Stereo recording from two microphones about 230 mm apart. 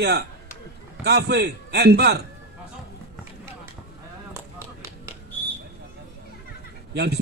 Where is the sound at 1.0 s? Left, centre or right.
Right.